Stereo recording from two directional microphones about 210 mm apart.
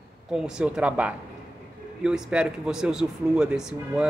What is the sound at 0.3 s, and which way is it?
Speech, 5° right (ahead or behind).